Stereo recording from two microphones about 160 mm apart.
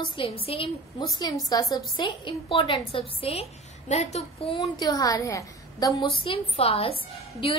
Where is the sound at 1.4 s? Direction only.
25° left (ahead or behind).